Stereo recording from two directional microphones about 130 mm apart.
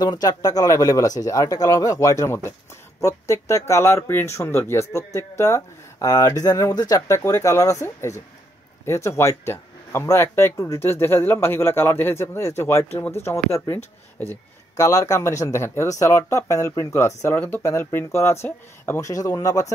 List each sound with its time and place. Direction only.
0.0 s speech: 30° left (ahead or behind)
14.8 s speech: 25° left (ahead or behind)